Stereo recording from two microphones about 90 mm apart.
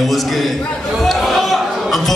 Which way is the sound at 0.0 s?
Centre (ahead or behind).